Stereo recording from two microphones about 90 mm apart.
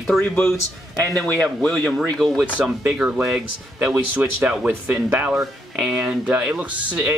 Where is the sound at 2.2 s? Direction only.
Centre (ahead or behind).